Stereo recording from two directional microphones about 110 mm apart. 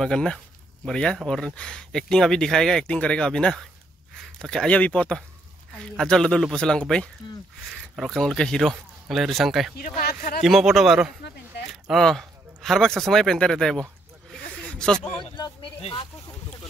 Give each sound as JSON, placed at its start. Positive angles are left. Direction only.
{"t": 0.0, "sound": "speech", "side_deg": 5}
{"t": 15.3, "sound": "speech", "side_deg": 45}